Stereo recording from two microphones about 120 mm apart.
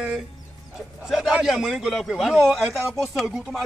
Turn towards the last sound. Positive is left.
turn(degrees=0)  # may be behind; listen again after turning